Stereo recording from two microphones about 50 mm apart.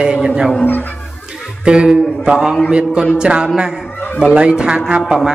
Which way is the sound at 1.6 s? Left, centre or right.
Centre.